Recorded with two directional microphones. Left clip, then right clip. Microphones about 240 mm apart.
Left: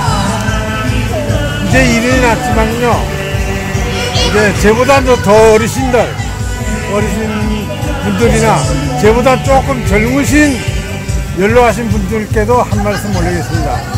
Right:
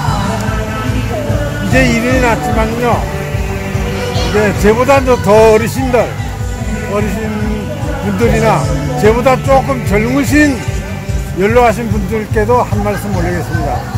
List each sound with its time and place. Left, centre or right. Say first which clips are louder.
1.7 s speech: left 1 dB; centre
4.5 s speech: right 1 dB; centre
8.2 s speech: left 1 dB; centre